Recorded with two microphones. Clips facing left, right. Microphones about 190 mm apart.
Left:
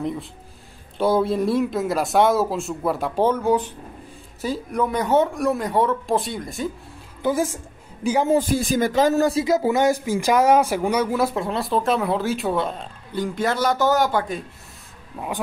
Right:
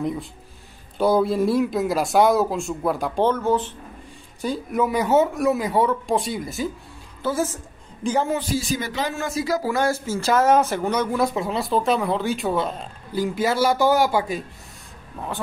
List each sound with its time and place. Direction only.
0.0 s speech: centre (ahead or behind)
4.4 s speech: centre (ahead or behind)
7.2 s a woman's voice: 15° left (ahead or behind)
8.4 s speech: 55° left (ahead or behind)
9.4 s speech: 25° left (ahead or behind); by 14.4 s 5° right (ahead or behind)
15.1 s speech: 10° left (ahead or behind)